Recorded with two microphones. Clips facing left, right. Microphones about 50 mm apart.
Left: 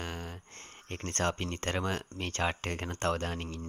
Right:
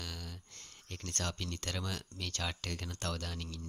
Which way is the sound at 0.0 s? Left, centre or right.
Left.